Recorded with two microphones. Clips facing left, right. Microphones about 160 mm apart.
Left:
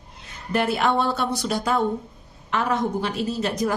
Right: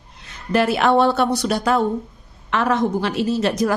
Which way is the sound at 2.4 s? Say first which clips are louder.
Right 4 dB; 90° right.